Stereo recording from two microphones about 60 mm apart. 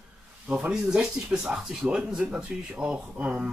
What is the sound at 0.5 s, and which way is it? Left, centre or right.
Speech, centre.